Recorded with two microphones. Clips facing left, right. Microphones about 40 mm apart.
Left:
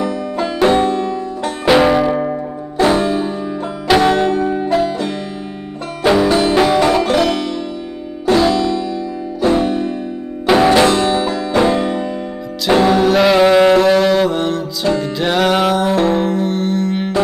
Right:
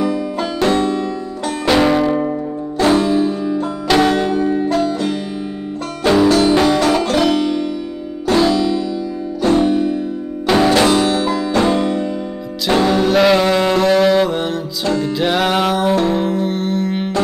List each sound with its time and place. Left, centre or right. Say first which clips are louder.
0.0 s music: even; centre
0.8 s music: left 2 dB; left
1.4 s music: left 2 dB; centre
7.2 s music: right 3 dB; centre
8.3 s music: left 1 dB; centre